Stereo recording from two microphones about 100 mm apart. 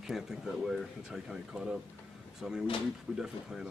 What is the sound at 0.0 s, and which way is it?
Speech, 5° right (ahead or behind).